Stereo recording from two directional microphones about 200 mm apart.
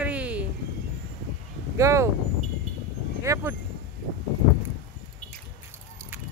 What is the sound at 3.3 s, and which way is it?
Speech, 15° right (ahead or behind).